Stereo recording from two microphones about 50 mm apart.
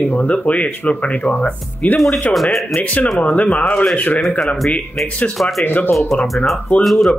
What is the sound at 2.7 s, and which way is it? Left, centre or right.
Speech, left.